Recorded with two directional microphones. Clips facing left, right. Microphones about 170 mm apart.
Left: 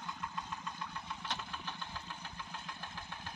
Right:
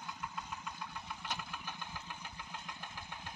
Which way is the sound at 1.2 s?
10° right (ahead or behind).